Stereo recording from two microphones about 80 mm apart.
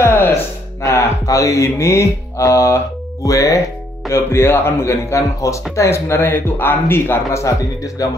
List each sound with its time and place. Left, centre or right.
0.0 s music: left
0.8 s speech: left
7.4 s speech: left